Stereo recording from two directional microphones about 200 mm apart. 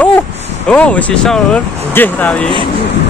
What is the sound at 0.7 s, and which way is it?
Speech, 5° left (ahead or behind).